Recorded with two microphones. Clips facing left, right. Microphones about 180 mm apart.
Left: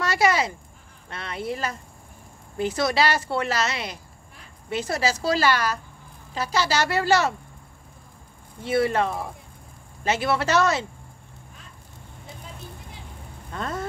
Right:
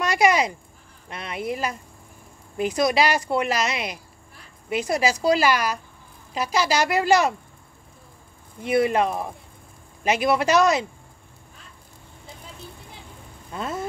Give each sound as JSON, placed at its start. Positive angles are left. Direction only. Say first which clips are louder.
{"t": 0.0, "sound": "speech", "louder": "right 2 dB", "side_deg": -15}
{"t": 8.6, "sound": "speech", "louder": "right 2 dB", "side_deg": -15}
{"t": 13.5, "sound": "a sound", "louder": "right 1 dB", "side_deg": -10}